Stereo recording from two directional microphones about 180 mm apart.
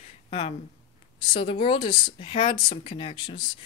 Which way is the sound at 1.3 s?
30° left (ahead or behind).